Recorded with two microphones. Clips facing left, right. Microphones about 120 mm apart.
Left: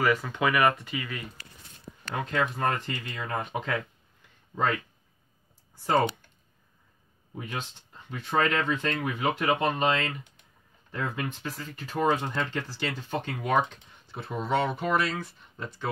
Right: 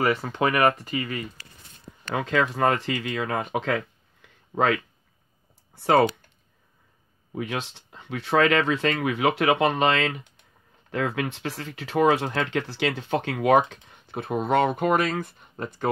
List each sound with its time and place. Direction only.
0.0 s speech: 30° right (ahead or behind)
2.1 s speech: 90° right
5.8 s speech: 75° right (ahead or behind)
7.3 s speech: 85° right
14.0 s speech: 55° right (ahead or behind)